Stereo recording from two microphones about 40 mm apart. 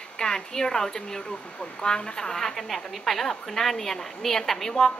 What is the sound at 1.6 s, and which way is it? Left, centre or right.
A woman's voice, left.